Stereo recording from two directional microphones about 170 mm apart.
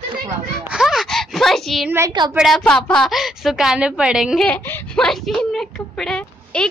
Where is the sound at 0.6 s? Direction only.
5° right (ahead or behind).